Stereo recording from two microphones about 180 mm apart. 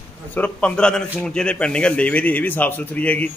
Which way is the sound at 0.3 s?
10° left (ahead or behind).